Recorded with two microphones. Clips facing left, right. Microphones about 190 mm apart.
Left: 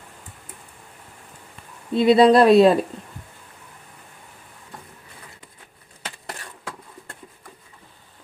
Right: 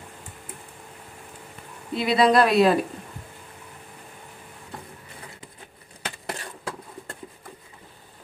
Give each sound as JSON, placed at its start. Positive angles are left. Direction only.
{"t": 2.0, "sound": "speech", "side_deg": 30}